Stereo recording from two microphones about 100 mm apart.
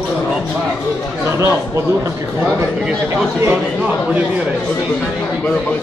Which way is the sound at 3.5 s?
15° right (ahead or behind).